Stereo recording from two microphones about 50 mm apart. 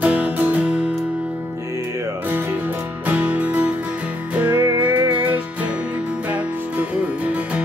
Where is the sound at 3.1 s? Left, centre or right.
Right.